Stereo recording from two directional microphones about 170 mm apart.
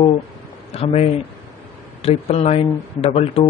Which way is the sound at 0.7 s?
40° left (ahead or behind).